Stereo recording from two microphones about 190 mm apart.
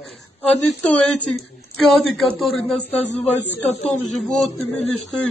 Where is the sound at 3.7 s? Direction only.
35° left (ahead or behind).